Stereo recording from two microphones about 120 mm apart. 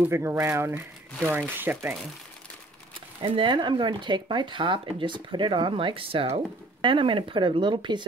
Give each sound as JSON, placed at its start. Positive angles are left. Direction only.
{"t": 0.0, "sound": "speech", "side_deg": -20}
{"t": 3.2, "sound": "speech", "side_deg": -40}